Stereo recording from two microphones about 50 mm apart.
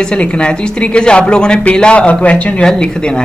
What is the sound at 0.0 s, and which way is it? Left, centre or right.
A woman's voice, left.